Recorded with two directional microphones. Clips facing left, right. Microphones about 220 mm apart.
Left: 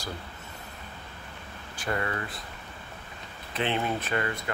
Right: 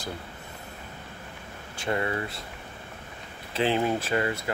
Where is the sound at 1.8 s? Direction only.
25° right (ahead or behind).